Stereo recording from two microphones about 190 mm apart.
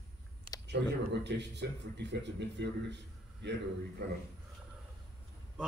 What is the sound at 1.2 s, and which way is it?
Speech, 65° right (ahead or behind).